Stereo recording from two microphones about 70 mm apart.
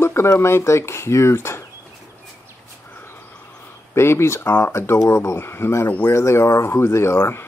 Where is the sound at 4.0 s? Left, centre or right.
Left.